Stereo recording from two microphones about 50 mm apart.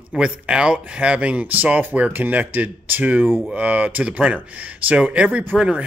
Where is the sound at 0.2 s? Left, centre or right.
Centre.